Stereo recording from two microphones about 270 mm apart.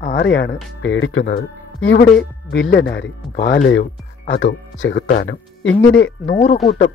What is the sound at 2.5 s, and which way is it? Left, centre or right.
Speech, left.